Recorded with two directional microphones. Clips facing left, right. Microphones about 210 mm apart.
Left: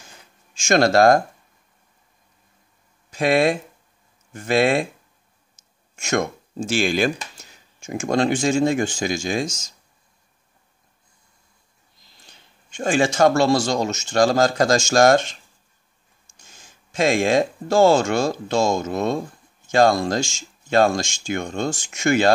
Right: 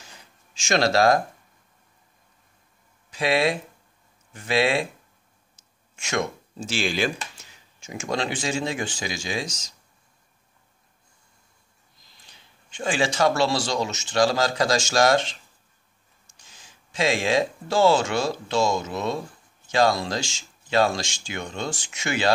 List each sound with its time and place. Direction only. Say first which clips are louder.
0.6 s speech: left 5 dB; 50° left (ahead or behind)
3.1 s speech: left 4 dB; 50° left (ahead or behind)
5.9 s speech: left 4 dB; 45° left (ahead or behind)
12.3 s speech: left 2 dB; 45° left (ahead or behind)
16.3 s speech: left 3 dB; 45° left (ahead or behind)